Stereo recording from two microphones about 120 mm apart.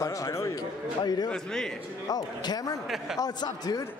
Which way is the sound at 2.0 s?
35° left (ahead or behind).